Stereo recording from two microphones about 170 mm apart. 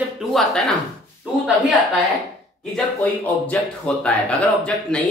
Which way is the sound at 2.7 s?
5° left (ahead or behind).